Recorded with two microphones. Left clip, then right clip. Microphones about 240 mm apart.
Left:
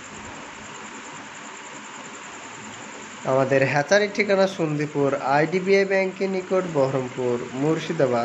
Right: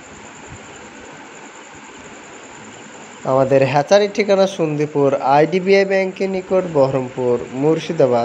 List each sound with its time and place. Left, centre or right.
3.3 s speech: centre